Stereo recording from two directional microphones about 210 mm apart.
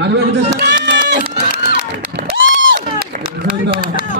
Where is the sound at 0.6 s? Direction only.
55° right (ahead or behind).